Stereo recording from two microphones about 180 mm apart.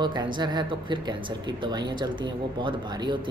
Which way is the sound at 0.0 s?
25° right (ahead or behind).